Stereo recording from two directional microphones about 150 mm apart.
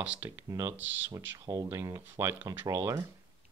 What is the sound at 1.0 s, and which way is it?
Speech, 25° right (ahead or behind).